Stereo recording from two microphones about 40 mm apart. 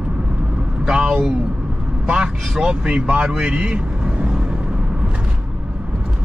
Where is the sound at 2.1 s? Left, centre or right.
Centre.